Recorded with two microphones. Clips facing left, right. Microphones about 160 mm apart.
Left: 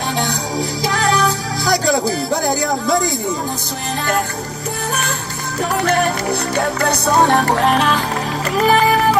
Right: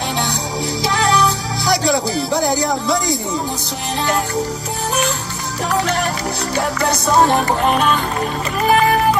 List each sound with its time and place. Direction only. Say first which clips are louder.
0.8 s music: right 1 dB; 45° left (ahead or behind)
2.4 s music: right 1 dB; 20° right (ahead or behind)